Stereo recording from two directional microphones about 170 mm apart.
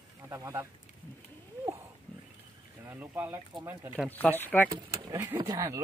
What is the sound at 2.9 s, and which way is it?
Speech, 10° right (ahead or behind).